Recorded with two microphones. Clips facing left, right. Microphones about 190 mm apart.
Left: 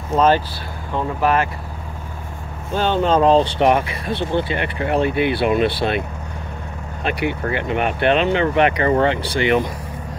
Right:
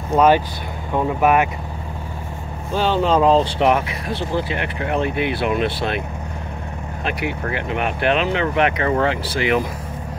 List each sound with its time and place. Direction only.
0.1 s speech: 10° right (ahead or behind)
2.7 s speech: 5° right (ahead or behind)
7.1 s speech: centre (ahead or behind)